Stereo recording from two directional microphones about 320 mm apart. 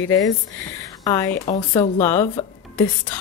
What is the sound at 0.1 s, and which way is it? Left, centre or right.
A woman's voice, centre.